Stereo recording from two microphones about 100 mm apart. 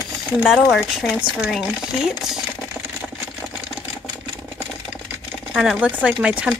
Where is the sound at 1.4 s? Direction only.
5° right (ahead or behind).